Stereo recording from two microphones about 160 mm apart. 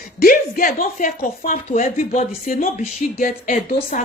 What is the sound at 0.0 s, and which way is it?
A woman's voice, 60° left (ahead or behind).